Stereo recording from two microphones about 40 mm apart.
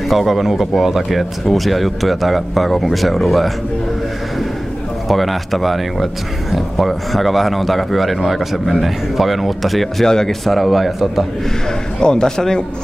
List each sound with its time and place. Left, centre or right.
0.1 s speech: centre
5.0 s speech: centre
10.0 s speech: centre
10.4 s speech: centre
12.0 s speech: centre